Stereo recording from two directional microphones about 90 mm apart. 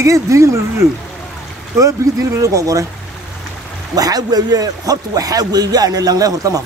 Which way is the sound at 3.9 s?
45° right (ahead or behind).